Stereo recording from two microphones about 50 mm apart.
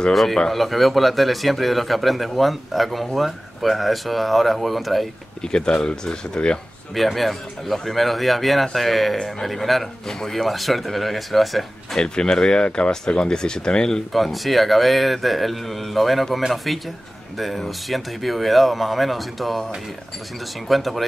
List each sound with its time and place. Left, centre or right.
0.1 s a man's voice: centre
5.4 s speech: centre
7.0 s a man's voice: centre
12.0 s speech: centre
14.1 s a man's voice: centre